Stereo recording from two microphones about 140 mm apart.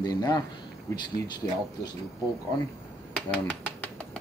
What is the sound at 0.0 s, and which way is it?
Speech, 30° left (ahead or behind).